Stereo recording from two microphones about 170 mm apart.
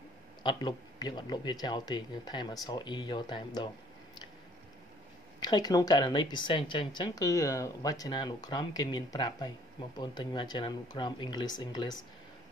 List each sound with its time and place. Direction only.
0.4 s speech: 25° left (ahead or behind)
5.4 s speech: 25° left (ahead or behind)